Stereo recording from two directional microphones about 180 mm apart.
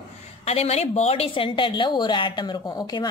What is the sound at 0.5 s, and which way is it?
A woman's voice, 35° left (ahead or behind).